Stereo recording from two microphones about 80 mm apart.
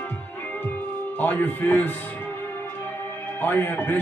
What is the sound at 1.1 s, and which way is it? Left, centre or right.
Speech, left.